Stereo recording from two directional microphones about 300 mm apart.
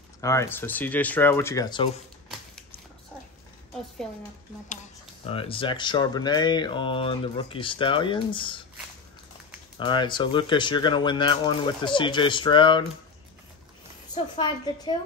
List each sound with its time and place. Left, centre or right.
0.2 s speech: centre
5.2 s speech: centre
9.8 s speech: centre
14.1 s speech: centre